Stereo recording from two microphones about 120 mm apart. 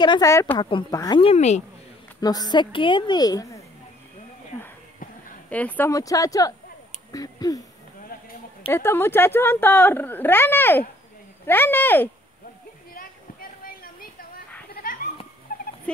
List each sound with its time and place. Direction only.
0.0 s a woman's voice: 40° left (ahead or behind)
0.3 s speech: 25° left (ahead or behind)
0.6 s a woman's voice: 40° left (ahead or behind)
1.2 s speech: 70° left (ahead or behind)
2.1 s a woman's voice: 35° left (ahead or behind)
5.5 s speech: 15° left (ahead or behind)
5.9 s speech: 30° left (ahead or behind)
8.6 s speech: 20° left (ahead or behind)